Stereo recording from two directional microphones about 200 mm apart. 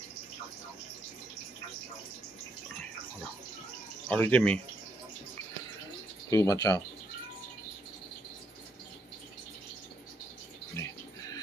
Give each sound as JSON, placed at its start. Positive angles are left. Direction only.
{"t": 4.1, "sound": "speech", "side_deg": 5}
{"t": 6.3, "sound": "speech", "side_deg": 15}